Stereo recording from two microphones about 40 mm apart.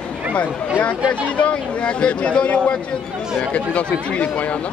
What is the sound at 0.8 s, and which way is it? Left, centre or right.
Speech, left.